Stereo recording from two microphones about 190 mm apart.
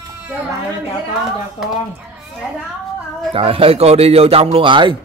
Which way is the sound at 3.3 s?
30° right (ahead or behind).